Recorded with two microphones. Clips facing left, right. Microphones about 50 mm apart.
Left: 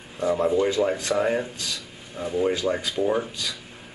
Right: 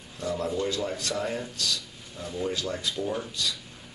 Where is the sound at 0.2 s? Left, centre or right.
Left.